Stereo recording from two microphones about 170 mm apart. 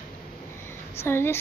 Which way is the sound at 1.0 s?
15° left (ahead or behind).